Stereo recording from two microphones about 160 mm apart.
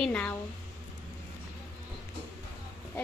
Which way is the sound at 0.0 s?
10° left (ahead or behind).